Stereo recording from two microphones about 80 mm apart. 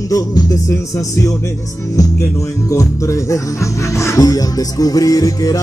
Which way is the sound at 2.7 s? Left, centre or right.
Left.